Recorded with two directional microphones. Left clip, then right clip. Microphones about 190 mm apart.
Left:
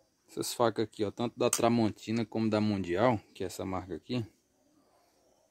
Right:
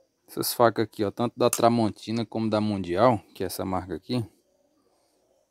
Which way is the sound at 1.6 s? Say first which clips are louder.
Right 6 dB; 35° right (ahead or behind).